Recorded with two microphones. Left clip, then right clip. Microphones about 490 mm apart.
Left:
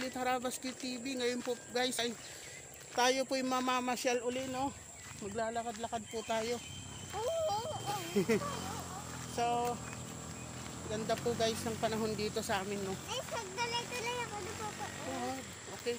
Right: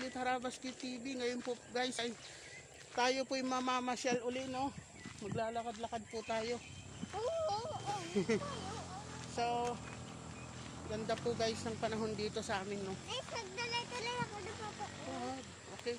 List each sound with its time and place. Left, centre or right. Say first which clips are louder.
0.0 s speech: left 3 dB; right
7.4 s music: left 3 dB; right
9.3 s speech: left 3 dB; right
10.9 s speech: left 3 dB; right
13.1 s a sound: left 2 dB; right
15.9 s speech: left 4 dB; right